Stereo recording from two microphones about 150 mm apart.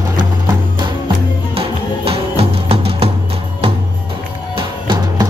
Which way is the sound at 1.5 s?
40° right (ahead or behind).